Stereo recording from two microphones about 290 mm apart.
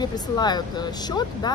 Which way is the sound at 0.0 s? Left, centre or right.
Centre.